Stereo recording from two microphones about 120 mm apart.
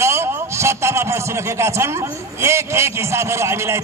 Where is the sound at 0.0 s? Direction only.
20° right (ahead or behind).